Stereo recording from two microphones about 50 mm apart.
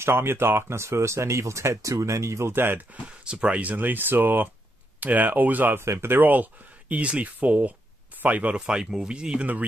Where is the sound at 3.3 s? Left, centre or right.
Right.